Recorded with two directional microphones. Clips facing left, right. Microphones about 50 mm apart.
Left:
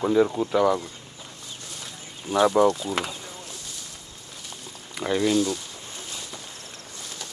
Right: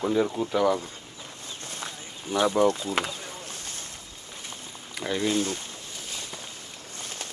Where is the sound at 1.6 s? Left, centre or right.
Right.